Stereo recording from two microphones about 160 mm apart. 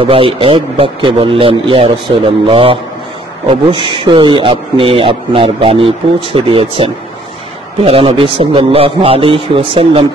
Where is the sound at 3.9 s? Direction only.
30° right (ahead or behind).